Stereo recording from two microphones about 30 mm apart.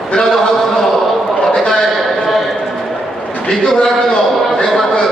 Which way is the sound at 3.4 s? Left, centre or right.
Centre.